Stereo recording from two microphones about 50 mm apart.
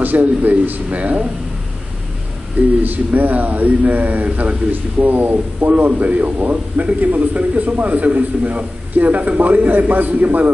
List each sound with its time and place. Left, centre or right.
0.0 s a man's voice: right
2.8 s a man's voice: right